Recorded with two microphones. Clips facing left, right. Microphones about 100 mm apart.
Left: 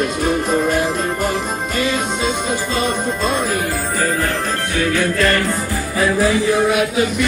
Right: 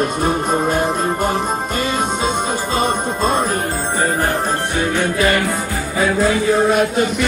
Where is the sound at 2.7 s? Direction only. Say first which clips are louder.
Right 3 dB; 45° right (ahead or behind).